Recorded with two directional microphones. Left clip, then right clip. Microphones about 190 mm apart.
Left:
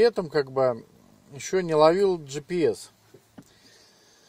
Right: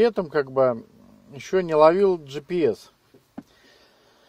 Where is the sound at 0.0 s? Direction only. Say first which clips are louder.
Right 1 dB; 5° left (ahead or behind).